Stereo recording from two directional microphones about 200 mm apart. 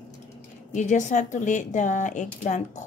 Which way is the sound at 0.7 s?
35° left (ahead or behind).